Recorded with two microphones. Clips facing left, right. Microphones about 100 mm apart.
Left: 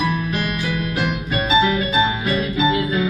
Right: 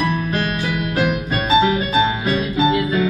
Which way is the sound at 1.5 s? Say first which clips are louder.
Right 2 dB; 35° right (ahead or behind).